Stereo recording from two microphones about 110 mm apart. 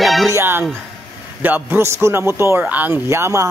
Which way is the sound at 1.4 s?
15° right (ahead or behind).